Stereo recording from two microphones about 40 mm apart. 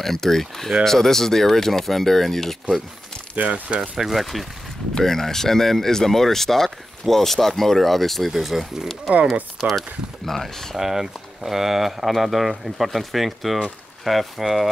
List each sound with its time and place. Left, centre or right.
0.0 s speech: centre
3.3 s speech: right
3.9 s speech: centre
5.0 s speech: centre
10.8 s speech: centre